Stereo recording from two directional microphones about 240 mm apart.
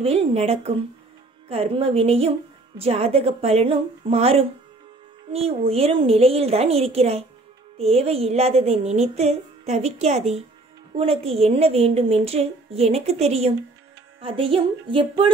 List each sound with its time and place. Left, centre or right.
0.0 s a woman's voice: right